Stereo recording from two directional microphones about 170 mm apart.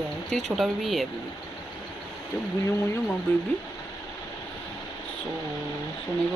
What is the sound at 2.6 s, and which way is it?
Speech, 15° left (ahead or behind).